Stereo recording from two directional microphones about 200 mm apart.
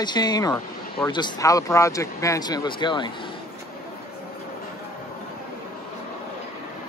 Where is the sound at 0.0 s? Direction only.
20° left (ahead or behind).